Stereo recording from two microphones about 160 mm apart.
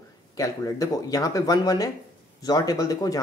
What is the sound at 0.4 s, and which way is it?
Speech, 20° left (ahead or behind).